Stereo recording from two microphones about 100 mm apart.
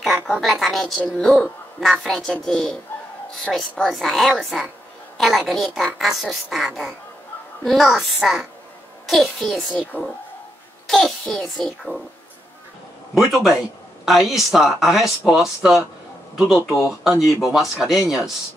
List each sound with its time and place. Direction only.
0.0 s speech: centre (ahead or behind)
9.9 s speech: 15° left (ahead or behind)
10.9 s speech: 5° left (ahead or behind)
13.1 s speech: centre (ahead or behind)